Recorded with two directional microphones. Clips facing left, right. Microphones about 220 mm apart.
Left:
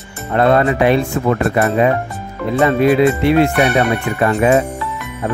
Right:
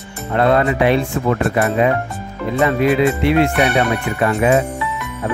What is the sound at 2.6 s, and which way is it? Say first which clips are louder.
Speech: left 3 dB; 40° left (ahead or behind).